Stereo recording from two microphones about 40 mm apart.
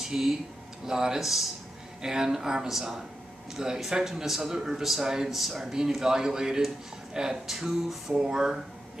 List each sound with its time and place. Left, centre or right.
0.0 s speech: centre
1.2 s a sound: centre
2.0 s speech: centre
6.0 s speech: centre
7.5 s a sound: centre
8.2 s speech: centre